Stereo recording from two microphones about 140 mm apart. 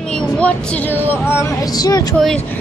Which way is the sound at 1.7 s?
25° left (ahead or behind).